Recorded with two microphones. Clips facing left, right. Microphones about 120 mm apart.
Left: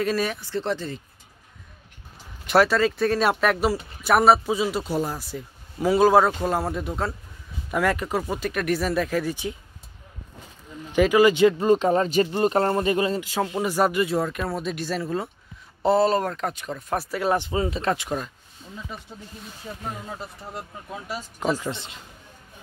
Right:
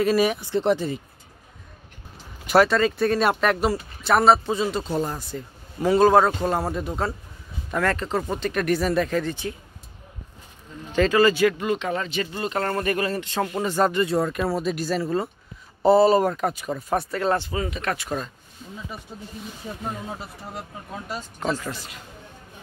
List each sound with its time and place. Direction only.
0.0 s speech: 10° right (ahead or behind)
2.4 s speech: centre (ahead or behind)
7.7 s speech: 10° left (ahead or behind)
10.9 s speech: 15° left (ahead or behind)
11.5 s speech: 35° left (ahead or behind)
12.6 s speech: 20° left (ahead or behind)
13.2 s speech: 5° left (ahead or behind)
17.4 s speech: 25° left (ahead or behind)
17.9 s speech: 10° left (ahead or behind)
19.8 s speech: 10° right (ahead or behind)
21.1 s speech: 10° left (ahead or behind)